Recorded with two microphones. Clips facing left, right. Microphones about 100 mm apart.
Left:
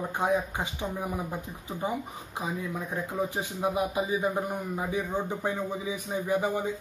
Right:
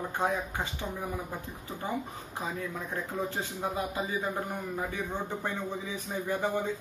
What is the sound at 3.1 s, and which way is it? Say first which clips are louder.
Speech: left 4 dB; 15° left (ahead or behind).